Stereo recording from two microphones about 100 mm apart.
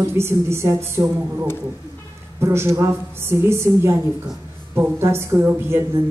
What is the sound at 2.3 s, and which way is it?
A woman's voice, 25° right (ahead or behind).